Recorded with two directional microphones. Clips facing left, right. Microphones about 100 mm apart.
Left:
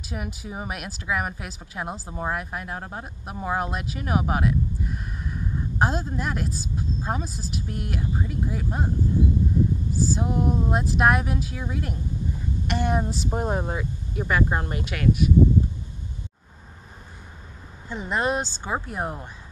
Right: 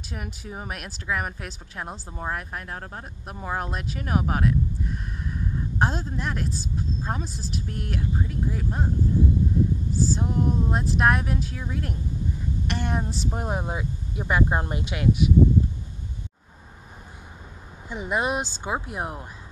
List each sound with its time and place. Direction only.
0.1 s speech: 5° left (ahead or behind)
9.9 s speech: 5° left (ahead or behind); by 15.3 s 20° right (ahead or behind)
17.8 s speech: 15° right (ahead or behind)